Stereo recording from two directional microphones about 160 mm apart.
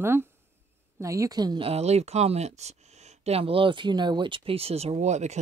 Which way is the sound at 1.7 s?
40° right (ahead or behind).